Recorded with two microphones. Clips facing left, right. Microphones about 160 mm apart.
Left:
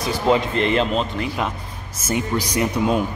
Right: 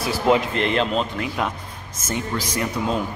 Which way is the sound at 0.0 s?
5° right (ahead or behind).